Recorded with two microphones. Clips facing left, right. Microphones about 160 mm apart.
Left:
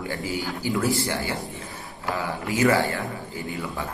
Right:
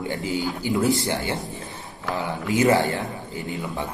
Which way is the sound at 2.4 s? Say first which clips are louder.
Right 2 dB; 20° right (ahead or behind).